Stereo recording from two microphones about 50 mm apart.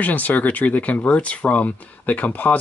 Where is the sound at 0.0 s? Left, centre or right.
Left.